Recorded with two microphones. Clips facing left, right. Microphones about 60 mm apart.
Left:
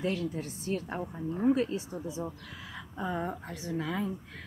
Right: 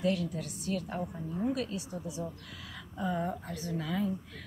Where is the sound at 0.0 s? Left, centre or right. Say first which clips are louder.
Right 1 dB; left.